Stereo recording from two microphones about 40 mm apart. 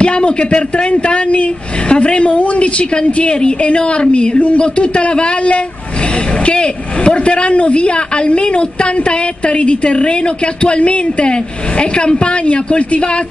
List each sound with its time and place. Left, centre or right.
0.0 s speech: left